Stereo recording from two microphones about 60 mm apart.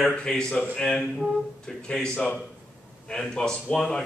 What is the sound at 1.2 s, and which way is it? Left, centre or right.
Speech, centre.